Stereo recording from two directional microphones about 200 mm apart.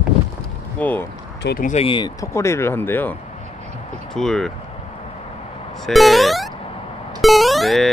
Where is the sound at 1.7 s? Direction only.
30° left (ahead or behind); by 4.5 s centre (ahead or behind).